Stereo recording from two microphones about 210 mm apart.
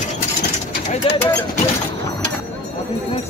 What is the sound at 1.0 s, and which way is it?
Speech, 25° left (ahead or behind).